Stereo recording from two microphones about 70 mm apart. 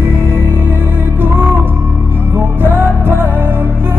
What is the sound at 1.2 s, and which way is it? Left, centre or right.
Music, right.